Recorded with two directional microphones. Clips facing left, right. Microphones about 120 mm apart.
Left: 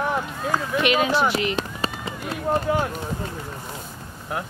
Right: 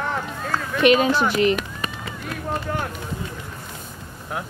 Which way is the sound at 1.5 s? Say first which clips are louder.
Right 1 dB; 30° left (ahead or behind).